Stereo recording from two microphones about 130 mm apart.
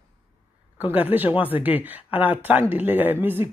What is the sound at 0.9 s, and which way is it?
Speech, 15° right (ahead or behind).